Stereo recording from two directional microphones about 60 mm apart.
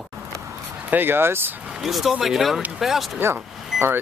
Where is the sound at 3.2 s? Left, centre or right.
Right.